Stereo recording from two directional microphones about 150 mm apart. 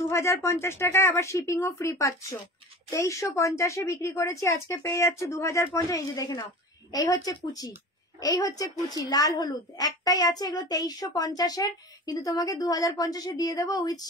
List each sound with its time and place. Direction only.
0.1 s a woman's voice: 20° left (ahead or behind)